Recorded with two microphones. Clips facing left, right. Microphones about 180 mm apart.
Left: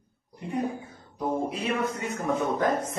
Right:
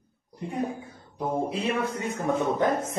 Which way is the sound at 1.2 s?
25° right (ahead or behind).